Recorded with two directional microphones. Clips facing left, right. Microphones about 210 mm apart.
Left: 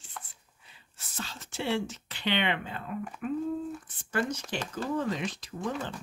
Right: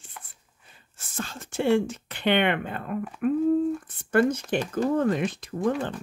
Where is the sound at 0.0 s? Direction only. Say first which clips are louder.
Left 1 dB; 50° right (ahead or behind).